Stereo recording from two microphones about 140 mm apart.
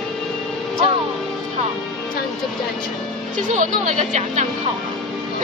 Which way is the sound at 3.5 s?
60° right (ahead or behind).